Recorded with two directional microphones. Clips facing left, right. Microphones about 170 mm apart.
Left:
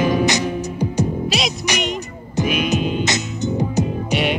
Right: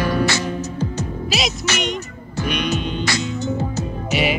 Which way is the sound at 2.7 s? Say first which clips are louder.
Left 4 dB; 5° left (ahead or behind).